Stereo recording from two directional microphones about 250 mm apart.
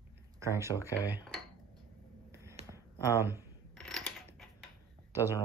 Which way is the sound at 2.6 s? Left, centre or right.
Right.